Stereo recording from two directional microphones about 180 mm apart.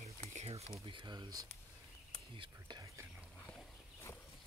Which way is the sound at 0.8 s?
25° right (ahead or behind).